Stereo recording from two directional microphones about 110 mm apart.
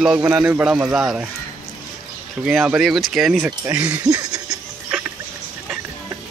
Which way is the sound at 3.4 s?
15° right (ahead or behind).